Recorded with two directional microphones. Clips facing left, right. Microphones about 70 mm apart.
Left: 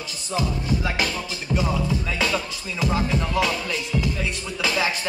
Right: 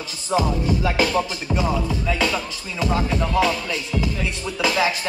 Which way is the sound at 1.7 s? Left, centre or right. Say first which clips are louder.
Right 2 dB; centre.